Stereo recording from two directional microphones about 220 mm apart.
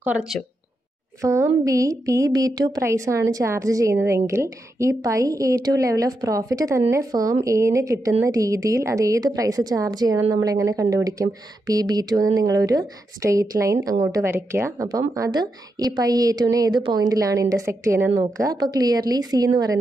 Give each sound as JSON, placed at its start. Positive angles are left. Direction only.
{"t": 0.0, "sound": "a woman's voice", "side_deg": -5}